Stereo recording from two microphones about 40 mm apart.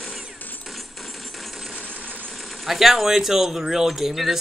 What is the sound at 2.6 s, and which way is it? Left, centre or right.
Speech, centre.